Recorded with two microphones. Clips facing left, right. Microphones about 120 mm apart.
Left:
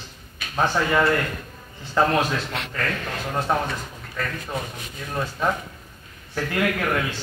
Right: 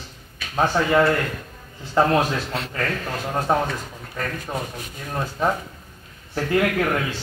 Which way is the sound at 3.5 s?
20° right (ahead or behind).